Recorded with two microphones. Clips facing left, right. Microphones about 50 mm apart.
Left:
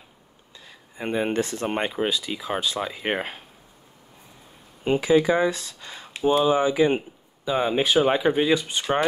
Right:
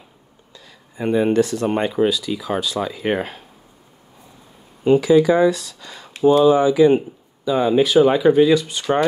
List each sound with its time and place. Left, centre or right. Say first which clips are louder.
0.7 s speech: right 7 dB; left
4.8 s speech: right 6 dB; left